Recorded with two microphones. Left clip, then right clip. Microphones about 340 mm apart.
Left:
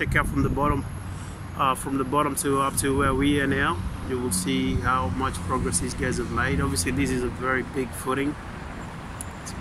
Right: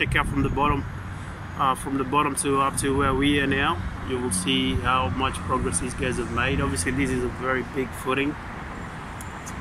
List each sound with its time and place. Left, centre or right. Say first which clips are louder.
0.0 s speech: right 1 dB; centre